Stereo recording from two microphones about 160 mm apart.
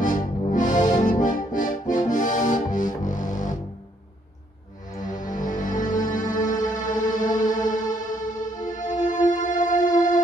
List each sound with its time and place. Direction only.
0.0 s music: 55° left (ahead or behind)
0.9 s accordion: 55° left (ahead or behind)
2.0 s music: 55° left (ahead or behind)
5.0 s music: 55° left (ahead or behind)